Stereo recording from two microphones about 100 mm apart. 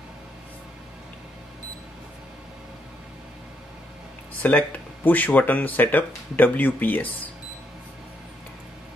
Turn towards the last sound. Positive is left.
turn(degrees=20)  # may be behind; listen again after turning